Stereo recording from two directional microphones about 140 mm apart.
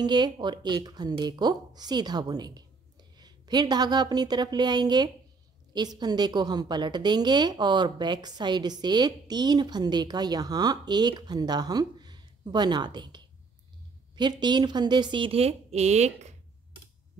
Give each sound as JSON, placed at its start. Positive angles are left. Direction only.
{"t": 0.0, "sound": "a woman's voice", "side_deg": -30}